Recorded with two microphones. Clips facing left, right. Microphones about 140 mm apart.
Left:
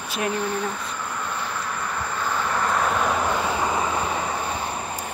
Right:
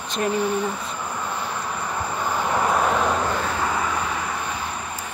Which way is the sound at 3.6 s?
25° left (ahead or behind).